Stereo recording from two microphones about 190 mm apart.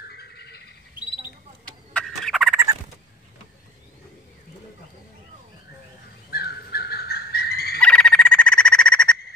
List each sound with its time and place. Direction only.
0.1 s bird: 60° left (ahead or behind)
2.0 s gobble: centre (ahead or behind)
2.5 s gobble: 15° right (ahead or behind)
6.3 s turkey: 55° left (ahead or behind)
7.8 s frog: 5° left (ahead or behind)